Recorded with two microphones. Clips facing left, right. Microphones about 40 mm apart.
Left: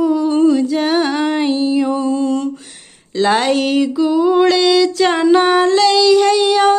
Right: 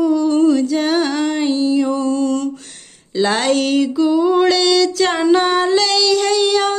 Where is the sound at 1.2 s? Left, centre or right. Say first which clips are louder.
Left 1 dB; left.